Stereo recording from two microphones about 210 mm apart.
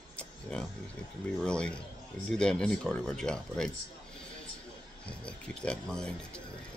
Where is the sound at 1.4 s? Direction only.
5° left (ahead or behind).